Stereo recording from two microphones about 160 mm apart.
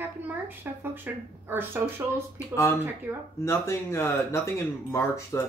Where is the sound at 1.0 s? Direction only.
15° right (ahead or behind).